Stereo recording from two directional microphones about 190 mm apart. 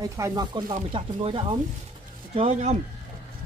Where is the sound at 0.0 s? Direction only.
20° right (ahead or behind); by 2.8 s 35° right (ahead or behind).